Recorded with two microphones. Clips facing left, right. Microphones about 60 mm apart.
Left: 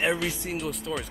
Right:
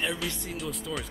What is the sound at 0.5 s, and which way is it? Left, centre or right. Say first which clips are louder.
Speech: left 3 dB; centre.